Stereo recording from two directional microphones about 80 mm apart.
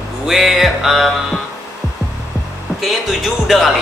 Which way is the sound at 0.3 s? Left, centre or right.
Centre.